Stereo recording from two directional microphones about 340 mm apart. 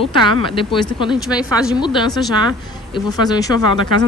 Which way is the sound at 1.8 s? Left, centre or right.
Centre.